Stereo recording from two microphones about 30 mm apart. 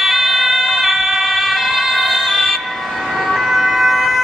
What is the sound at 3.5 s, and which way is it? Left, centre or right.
Ambulance, centre.